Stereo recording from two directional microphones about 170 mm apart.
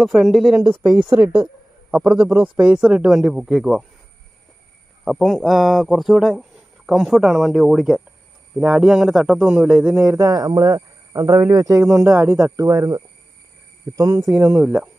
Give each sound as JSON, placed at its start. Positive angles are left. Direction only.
{"t": 0.0, "sound": "speech", "side_deg": 0}
{"t": 2.1, "sound": "speech", "side_deg": -20}
{"t": 2.4, "sound": "speech", "side_deg": -5}
{"t": 5.0, "sound": "speech", "side_deg": 0}
{"t": 9.9, "sound": "speech", "side_deg": -20}
{"t": 14.4, "sound": "speech", "side_deg": -5}